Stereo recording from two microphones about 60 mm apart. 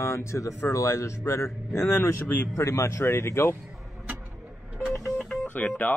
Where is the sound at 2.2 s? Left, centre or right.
Left.